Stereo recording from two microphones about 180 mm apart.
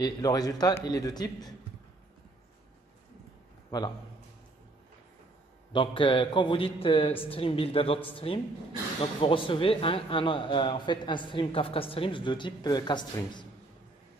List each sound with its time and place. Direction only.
0.0 s a man's voice: 20° left (ahead or behind)
3.7 s a man's voice: 20° left (ahead or behind)
5.7 s a man's voice: 25° left (ahead or behind)